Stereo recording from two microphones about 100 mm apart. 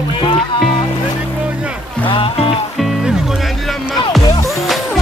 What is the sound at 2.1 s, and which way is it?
Music, 60° left (ahead or behind).